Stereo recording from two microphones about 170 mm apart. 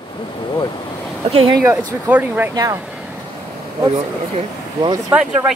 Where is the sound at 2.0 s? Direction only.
10° right (ahead or behind).